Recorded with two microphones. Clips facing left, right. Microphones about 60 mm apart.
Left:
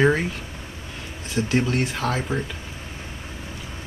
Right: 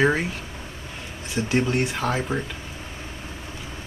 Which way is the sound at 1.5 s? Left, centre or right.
Centre.